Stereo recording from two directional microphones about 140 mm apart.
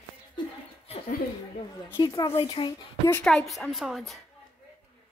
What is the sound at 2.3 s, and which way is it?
Speech, 40° left (ahead or behind).